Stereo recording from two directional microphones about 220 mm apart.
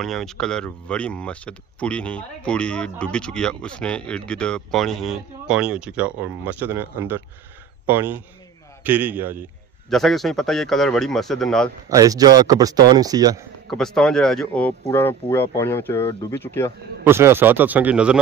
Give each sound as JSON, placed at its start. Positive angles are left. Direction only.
{"t": 0.0, "sound": "speech", "side_deg": 0}
{"t": 11.9, "sound": "speech", "side_deg": -15}
{"t": 13.7, "sound": "speech", "side_deg": 0}
{"t": 17.0, "sound": "speech", "side_deg": -10}